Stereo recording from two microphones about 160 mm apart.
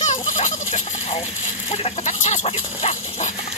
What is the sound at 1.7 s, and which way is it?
Chicken, 45° left (ahead or behind).